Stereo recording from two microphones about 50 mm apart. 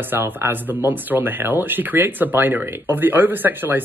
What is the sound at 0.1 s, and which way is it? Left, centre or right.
Speech, right.